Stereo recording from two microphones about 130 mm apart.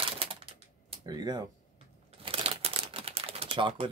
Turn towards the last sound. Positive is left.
turn(degrees=-45)  # may be behind; listen again after turning